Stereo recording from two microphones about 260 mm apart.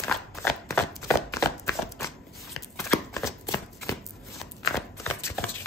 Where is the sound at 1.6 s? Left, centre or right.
Centre.